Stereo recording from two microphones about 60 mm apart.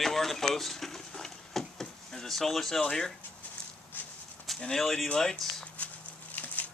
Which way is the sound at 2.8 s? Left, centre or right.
Centre.